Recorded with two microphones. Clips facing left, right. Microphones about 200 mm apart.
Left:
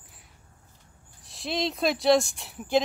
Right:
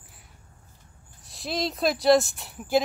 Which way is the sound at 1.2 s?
Centre (ahead or behind).